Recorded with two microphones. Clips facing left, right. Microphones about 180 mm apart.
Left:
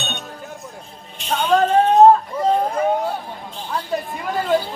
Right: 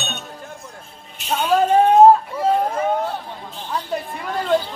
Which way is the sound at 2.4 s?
5° right (ahead or behind).